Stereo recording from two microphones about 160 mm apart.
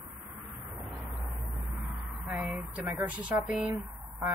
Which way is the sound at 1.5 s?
Centre (ahead or behind).